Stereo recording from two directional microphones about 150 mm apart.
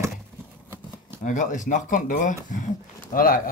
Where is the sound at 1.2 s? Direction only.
55° left (ahead or behind).